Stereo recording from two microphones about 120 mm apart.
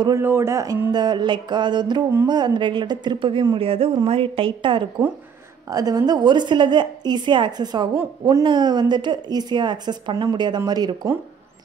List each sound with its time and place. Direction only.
0.2 s a woman's voice: 20° right (ahead or behind); by 4.8 s 40° right (ahead or behind)
5.7 s a woman's voice: 30° right (ahead or behind)